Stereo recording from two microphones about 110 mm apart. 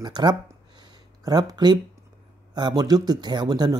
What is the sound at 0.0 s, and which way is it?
Speech, 40° right (ahead or behind).